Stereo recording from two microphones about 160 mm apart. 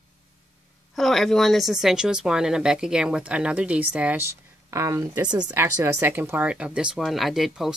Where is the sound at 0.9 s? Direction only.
Centre (ahead or behind).